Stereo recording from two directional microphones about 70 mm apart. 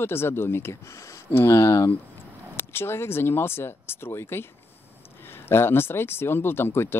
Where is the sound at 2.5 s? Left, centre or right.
Left.